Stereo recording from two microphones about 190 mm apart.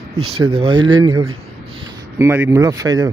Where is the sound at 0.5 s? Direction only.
25° right (ahead or behind).